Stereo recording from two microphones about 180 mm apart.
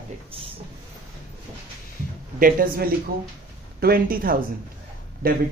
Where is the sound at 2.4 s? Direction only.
50° right (ahead or behind).